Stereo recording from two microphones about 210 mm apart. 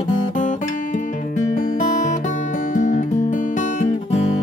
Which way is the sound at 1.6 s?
35° left (ahead or behind).